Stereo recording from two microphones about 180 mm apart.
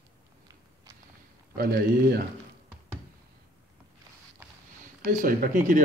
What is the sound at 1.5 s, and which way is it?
Speech, 55° right (ahead or behind).